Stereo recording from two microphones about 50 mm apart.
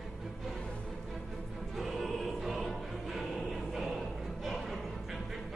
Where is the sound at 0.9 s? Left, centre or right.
Centre.